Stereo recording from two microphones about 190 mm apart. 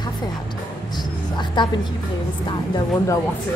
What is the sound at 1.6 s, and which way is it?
Speech, 25° left (ahead or behind).